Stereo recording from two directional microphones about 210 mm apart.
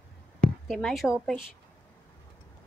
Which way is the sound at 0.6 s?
Centre (ahead or behind).